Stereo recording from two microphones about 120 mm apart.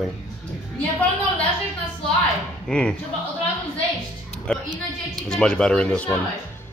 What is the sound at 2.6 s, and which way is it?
Speech, 5° left (ahead or behind).